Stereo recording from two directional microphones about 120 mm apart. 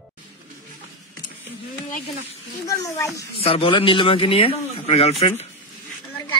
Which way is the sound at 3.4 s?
55° left (ahead or behind).